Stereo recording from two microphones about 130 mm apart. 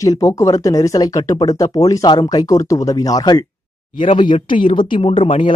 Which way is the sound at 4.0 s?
40° left (ahead or behind).